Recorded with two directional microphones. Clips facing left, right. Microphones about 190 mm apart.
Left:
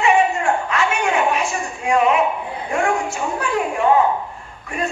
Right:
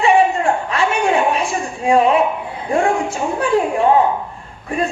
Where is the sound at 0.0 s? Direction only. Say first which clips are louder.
Right 3 dB; 30° right (ahead or behind).